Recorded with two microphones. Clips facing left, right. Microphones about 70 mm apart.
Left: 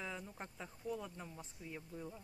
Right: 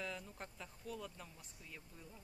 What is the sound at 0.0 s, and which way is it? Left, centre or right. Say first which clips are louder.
A woman's voice: left 1 dB; centre.